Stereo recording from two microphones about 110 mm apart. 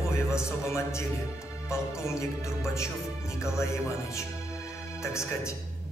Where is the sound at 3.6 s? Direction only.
25° left (ahead or behind).